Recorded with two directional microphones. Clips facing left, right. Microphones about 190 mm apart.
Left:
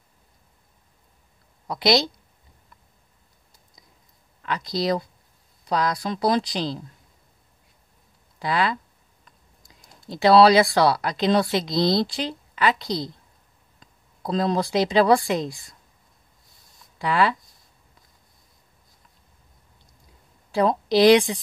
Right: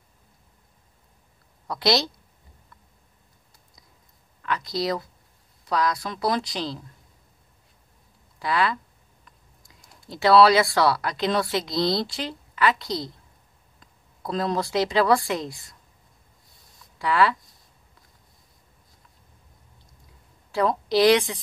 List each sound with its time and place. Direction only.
1.7 s a woman's voice: 15° left (ahead or behind)
4.4 s speech: 25° left (ahead or behind)
8.4 s speech: 25° left (ahead or behind)
10.0 s speech: 20° left (ahead or behind)
14.2 s speech: 25° left (ahead or behind)
17.0 s speech: 20° left (ahead or behind)
20.5 s a woman's voice: 20° left (ahead or behind)